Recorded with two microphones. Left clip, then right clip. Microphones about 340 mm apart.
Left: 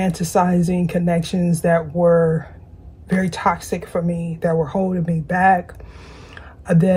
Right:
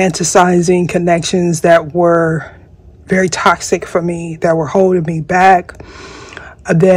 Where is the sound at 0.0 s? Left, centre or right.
Right.